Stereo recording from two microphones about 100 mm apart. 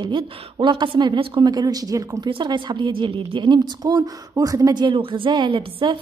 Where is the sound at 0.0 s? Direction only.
50° right (ahead or behind).